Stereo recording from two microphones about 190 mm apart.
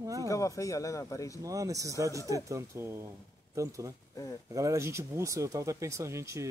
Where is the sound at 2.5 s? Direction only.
15° right (ahead or behind).